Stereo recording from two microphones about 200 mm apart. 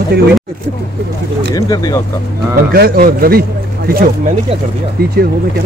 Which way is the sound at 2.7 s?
50° right (ahead or behind).